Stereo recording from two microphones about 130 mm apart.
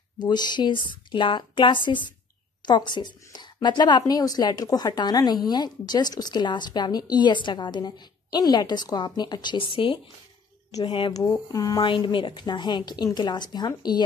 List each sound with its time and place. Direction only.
0.2 s speech: 35° left (ahead or behind)
11.2 s speech: 25° left (ahead or behind)